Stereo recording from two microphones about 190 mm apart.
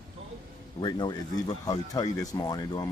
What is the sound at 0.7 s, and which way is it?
Speech, 25° left (ahead or behind).